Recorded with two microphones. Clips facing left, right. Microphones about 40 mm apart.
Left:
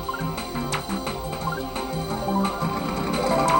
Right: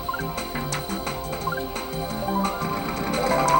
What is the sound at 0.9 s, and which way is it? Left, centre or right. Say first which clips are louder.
Music: left 1 dB; centre.